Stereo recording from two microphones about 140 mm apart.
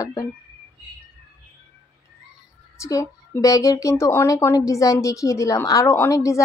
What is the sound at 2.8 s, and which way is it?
Speech, 20° left (ahead or behind).